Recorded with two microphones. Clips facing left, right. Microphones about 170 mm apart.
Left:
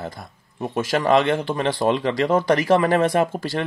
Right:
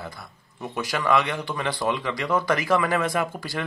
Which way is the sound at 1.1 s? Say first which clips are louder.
Left 5 dB; 30° left (ahead or behind).